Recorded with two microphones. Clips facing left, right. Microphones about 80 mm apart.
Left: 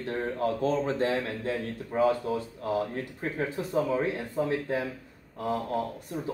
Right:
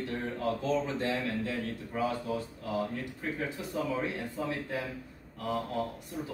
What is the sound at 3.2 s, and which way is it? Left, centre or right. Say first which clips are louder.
A man's voice: left 5 dB; left.